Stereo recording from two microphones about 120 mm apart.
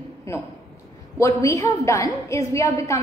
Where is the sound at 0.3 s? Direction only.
25° left (ahead or behind).